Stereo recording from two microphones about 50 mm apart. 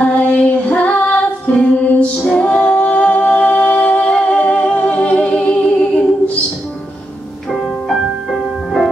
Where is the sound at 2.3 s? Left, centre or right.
Left.